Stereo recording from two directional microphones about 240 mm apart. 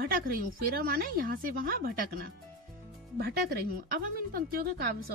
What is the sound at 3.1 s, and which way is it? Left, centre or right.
Speech, right.